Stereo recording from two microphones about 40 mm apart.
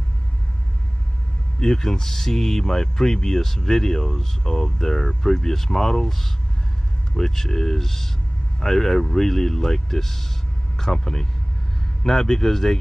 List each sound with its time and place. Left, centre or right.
1.6 s speech: centre